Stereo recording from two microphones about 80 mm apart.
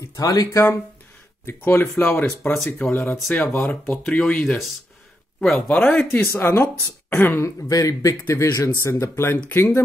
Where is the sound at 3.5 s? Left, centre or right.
Left.